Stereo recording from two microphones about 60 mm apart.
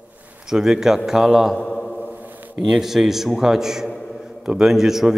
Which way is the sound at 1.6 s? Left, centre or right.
Centre.